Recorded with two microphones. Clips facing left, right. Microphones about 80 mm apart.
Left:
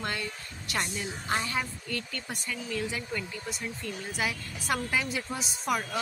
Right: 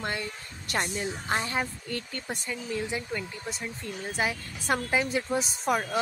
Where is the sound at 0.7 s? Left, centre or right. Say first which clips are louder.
Right 3 dB; right.